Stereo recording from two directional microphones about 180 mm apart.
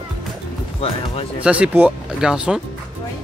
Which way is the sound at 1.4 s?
5° right (ahead or behind).